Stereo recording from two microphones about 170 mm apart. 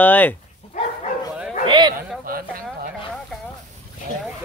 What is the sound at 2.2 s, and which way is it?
Speech, 60° right (ahead or behind).